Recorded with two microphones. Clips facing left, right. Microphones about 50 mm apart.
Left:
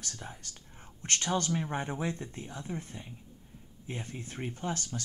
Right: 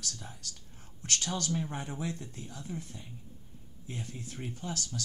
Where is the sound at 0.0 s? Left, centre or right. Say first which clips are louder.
Even; left.